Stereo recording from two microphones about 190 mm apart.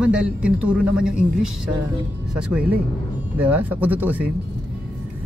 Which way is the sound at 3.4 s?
10° right (ahead or behind).